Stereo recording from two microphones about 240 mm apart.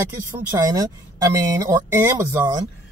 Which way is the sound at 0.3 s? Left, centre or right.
Centre.